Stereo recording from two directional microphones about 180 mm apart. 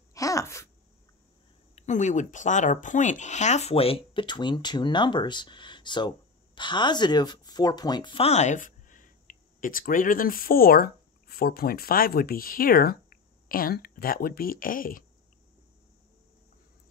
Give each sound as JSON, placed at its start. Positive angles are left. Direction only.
{"t": 0.1, "sound": "wail", "side_deg": 20}
{"t": 1.8, "sound": "speech", "side_deg": 40}